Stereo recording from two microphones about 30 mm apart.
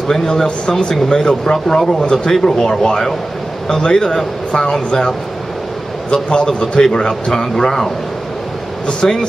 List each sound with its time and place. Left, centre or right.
0.1 s speech: centre
0.7 s speech: left
1.0 s a man's voice: centre
6.1 s a man's voice: left
9.0 s a man's voice: left